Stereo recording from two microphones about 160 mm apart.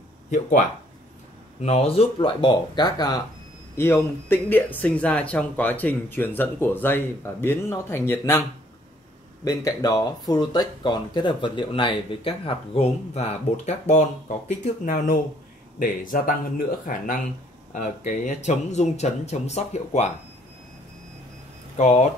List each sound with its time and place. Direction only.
0.3 s speech: 50° left (ahead or behind)
1.6 s speech: 40° left (ahead or behind)
3.7 s speech: 15° left (ahead or behind); by 14.0 s 45° left (ahead or behind)
14.6 s speech: 60° left (ahead or behind); by 20.1 s 45° left (ahead or behind)
21.7 s speech: 45° left (ahead or behind)